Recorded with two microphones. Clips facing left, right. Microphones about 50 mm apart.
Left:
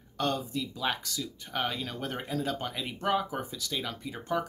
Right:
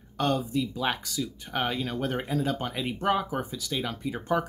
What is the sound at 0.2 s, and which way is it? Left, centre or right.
Speech, centre.